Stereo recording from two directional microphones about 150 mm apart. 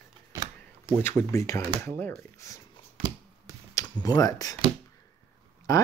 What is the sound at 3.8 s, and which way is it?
Speech, 20° left (ahead or behind).